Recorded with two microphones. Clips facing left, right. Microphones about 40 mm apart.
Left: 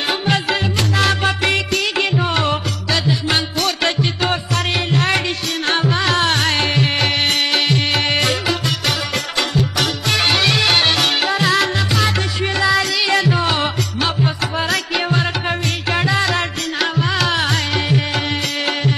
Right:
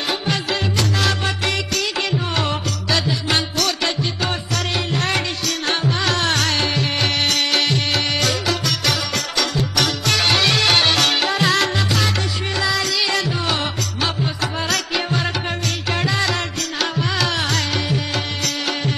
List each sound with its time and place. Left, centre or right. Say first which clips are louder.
0.7 s music: left 3 dB; left
2.3 s music: left 3 dB; centre
3.6 s music: left 3 dB; left
5.7 s music: left 4 dB; left
7.5 s music: left 2 dB; centre
8.5 s music: left 1 dB; centre
12.5 s music: left 4 dB; left